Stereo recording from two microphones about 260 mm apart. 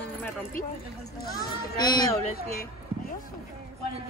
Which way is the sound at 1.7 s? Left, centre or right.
Centre.